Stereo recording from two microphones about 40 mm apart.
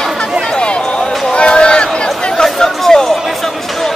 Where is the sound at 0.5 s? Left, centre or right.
Left.